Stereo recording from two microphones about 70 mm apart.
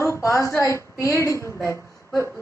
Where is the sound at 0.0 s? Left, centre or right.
Left.